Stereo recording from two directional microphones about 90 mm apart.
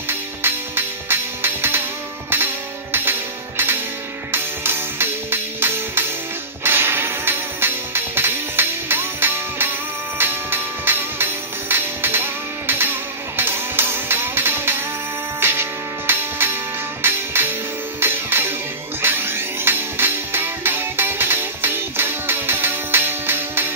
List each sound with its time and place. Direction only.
0.1 s music: 25° right (ahead or behind)